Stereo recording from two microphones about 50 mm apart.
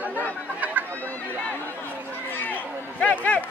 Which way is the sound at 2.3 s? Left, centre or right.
Left.